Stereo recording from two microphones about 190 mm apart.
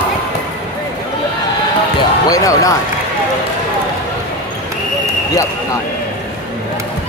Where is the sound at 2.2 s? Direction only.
20° left (ahead or behind).